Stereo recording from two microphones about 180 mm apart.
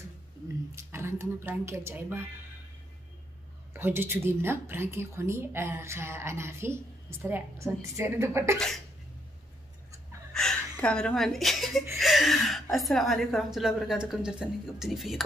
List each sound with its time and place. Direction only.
0.7 s a woman's voice: 15° right (ahead or behind)
3.7 s a woman's voice: 10° right (ahead or behind)
8.5 s a woman's voice: centre (ahead or behind)
10.3 s a woman's voice: 5° left (ahead or behind)
12.0 s a sound: centre (ahead or behind)
12.7 s a woman's voice: centre (ahead or behind)